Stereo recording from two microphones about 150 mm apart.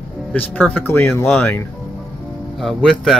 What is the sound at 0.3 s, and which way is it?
Speech, 10° left (ahead or behind).